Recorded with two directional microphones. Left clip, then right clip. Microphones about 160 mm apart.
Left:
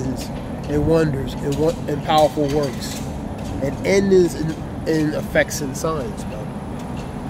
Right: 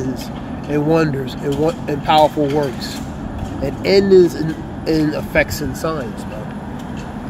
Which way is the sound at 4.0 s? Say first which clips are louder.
Right 6 dB; 10° right (ahead or behind).